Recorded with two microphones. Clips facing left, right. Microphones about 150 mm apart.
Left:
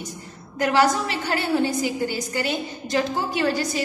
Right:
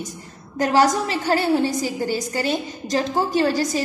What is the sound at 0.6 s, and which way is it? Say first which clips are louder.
A woman's voice: right 2 dB; 40° right (ahead or behind).